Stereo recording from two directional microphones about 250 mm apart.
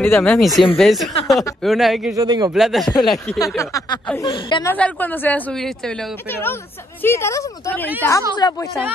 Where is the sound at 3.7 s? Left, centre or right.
Centre.